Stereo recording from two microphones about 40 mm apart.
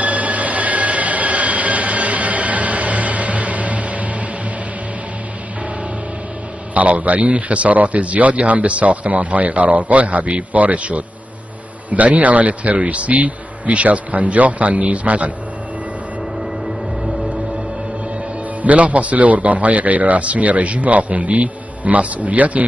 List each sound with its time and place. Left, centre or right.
0.0 s train: right
6.7 s a man's voice: right
18.6 s a man's voice: right